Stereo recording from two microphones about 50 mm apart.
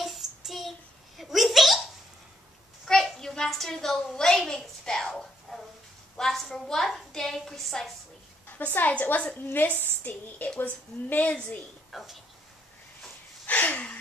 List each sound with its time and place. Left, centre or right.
0.0 s child singing: centre
1.1 s a sound: centre
2.8 s a woman's voice: centre
4.8 s a sound: centre
6.1 s a woman's voice: centre
8.5 s a woman's voice: left
9.4 s a woman's voice: left
9.8 s a woman's voice: left
11.9 s speech: centre
13.5 s a sound: left